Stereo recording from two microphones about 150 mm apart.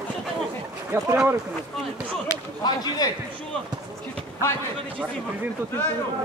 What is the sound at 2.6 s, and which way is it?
Speech, 30° left (ahead or behind).